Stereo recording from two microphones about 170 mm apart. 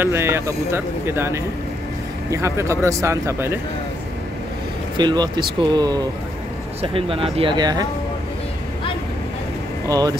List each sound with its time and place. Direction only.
0.0 s speech: 15° right (ahead or behind)
4.9 s speech: 25° right (ahead or behind)
9.8 s speech: 20° right (ahead or behind)